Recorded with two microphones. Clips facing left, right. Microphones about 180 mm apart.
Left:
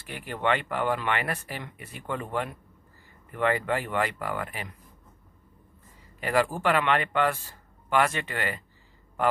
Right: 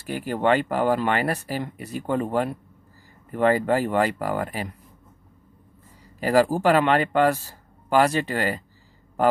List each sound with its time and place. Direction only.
0.0 s speech: 40° right (ahead or behind)
6.1 s speech: 35° right (ahead or behind)